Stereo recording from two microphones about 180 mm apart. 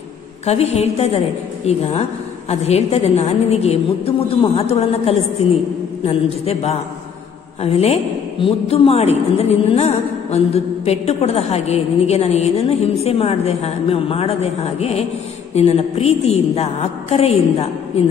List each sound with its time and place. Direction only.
0.5 s a woman's voice: 35° left (ahead or behind)